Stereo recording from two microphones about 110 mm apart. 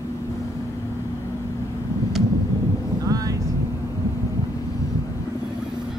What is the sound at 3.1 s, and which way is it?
Vehicle, 35° right (ahead or behind).